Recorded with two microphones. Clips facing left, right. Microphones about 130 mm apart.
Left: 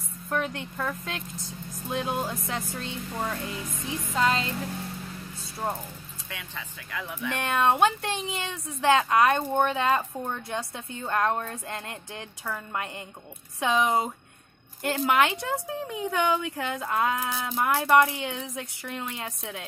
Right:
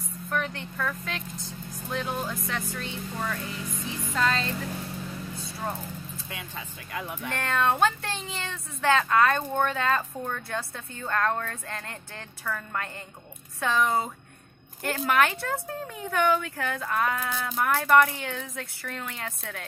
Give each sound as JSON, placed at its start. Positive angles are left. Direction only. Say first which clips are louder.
{"t": 0.3, "sound": "speech", "louder": "left 2 dB", "side_deg": 20}
{"t": 7.3, "sound": "speech", "louder": "left 2 dB", "side_deg": 20}